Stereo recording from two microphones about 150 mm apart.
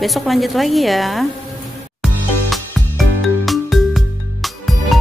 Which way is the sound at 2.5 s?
Centre (ahead or behind).